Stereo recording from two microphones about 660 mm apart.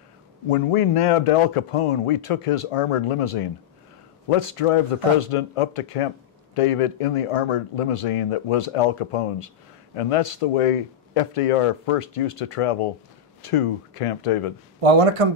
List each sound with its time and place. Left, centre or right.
0.5 s a man's voice: left
14.8 s speech: right